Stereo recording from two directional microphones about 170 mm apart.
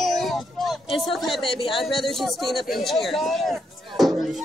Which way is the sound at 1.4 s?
30° left (ahead or behind).